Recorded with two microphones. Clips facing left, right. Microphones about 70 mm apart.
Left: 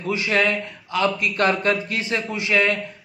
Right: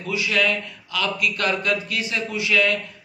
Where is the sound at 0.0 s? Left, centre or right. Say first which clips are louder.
Left 2 dB; left.